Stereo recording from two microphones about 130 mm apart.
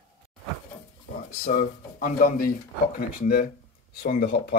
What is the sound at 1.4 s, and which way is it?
Speech, 90° left.